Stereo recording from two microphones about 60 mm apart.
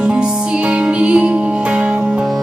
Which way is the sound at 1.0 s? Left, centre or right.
Centre.